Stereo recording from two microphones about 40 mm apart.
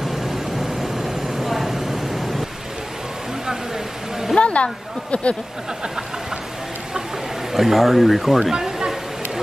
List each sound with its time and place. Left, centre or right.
0.1 s vehicle: centre
4.4 s speech: left
7.5 s speech: centre
8.5 s a sound: centre